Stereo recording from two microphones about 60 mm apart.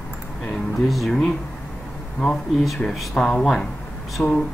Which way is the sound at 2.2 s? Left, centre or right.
Centre.